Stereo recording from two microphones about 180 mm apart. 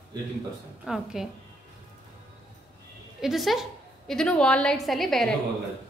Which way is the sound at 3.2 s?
Centre (ahead or behind).